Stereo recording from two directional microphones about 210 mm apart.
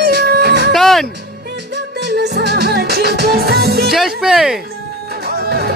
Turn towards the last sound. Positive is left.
turn(degrees=-50)  # may be behind; listen again after turning